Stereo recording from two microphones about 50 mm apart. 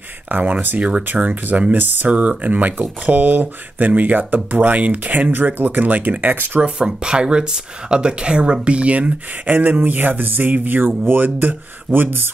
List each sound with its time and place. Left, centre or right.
0.3 s speech: right
0.7 s speech: right
1.1 s speech: right
2.0 s speech: right
6.9 s speech: centre; by 12.3 s right